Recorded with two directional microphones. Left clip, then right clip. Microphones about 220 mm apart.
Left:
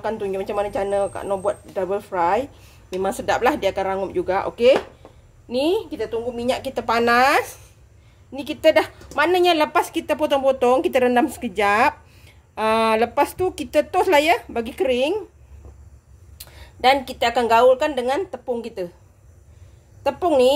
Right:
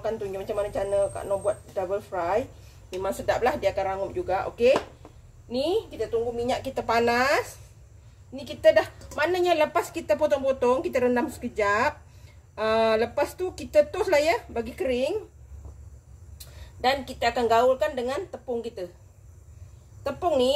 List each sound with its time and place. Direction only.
0.0 s speech: 45° left (ahead or behind)
8.5 s a woman's voice: 45° left (ahead or behind)
16.8 s speech: 45° left (ahead or behind)
20.0 s speech: 45° left (ahead or behind)